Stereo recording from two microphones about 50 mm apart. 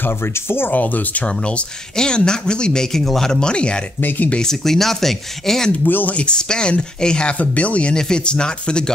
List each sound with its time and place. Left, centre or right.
0.0 s speech: left
0.7 s speech: left
1.2 s speech: left
4.0 s speech: left
4.4 s speech: centre
5.9 s speech: left
6.1 s speech: centre
7.3 s speech: left
7.9 s speech: centre